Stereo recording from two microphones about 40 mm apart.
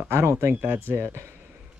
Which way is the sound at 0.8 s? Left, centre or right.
Right.